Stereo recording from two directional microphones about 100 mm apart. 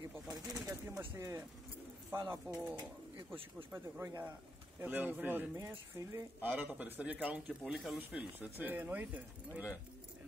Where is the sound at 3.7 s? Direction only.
25° right (ahead or behind).